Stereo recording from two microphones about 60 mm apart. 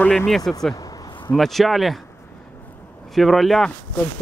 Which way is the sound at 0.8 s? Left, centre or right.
Left.